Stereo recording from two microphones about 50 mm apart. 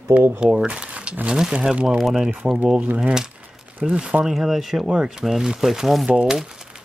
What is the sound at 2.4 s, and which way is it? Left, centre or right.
Speech, centre.